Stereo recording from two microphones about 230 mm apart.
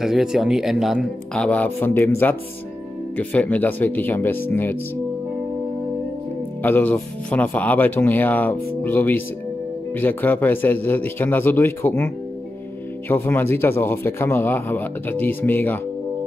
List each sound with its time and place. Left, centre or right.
0.0 s speech: centre
6.6 s speech: centre
13.1 s speech: centre